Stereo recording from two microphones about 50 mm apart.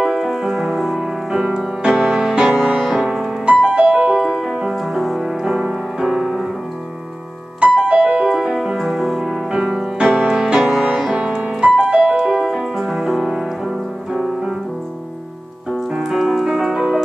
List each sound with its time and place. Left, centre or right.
0.0 s music: centre
2.9 s music: centre
3.4 s music: centre
4.2 s music: centre
7.6 s music: centre
15.9 s music: centre